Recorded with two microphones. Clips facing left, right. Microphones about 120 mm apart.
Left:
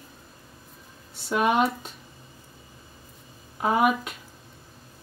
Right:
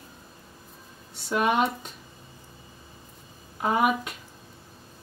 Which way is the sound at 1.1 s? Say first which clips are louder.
Left 1 dB; centre (ahead or behind).